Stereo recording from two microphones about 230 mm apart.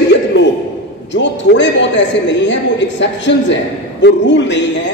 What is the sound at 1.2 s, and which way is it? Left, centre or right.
A man's voice, left.